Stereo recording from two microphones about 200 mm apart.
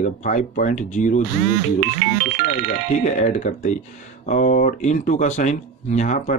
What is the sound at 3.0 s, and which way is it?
Speech, 40° left (ahead or behind).